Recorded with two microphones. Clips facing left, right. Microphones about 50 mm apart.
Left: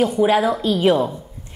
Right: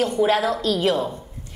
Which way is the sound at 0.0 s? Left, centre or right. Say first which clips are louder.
Left 3 dB; centre.